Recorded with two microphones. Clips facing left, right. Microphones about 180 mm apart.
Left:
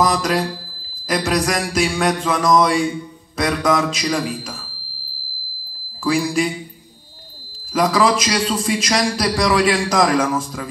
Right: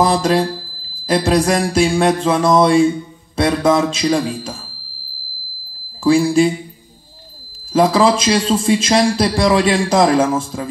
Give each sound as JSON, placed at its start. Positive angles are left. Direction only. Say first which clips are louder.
{"t": 0.0, "sound": "a man's voice", "louder": "right 4 dB", "side_deg": -30}
{"t": 6.0, "sound": "a man's voice", "louder": "right 6 dB", "side_deg": -30}
{"t": 7.7, "sound": "a man's voice", "louder": "right 4 dB", "side_deg": -25}